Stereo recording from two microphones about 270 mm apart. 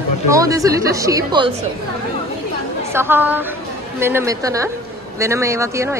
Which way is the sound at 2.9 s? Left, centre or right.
Centre.